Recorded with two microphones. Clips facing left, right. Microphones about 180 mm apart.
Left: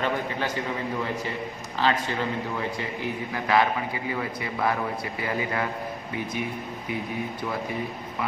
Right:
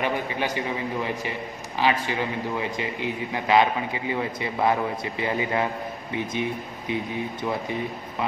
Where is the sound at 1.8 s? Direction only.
15° right (ahead or behind).